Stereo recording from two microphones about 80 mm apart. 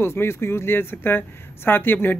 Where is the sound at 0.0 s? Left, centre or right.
Left.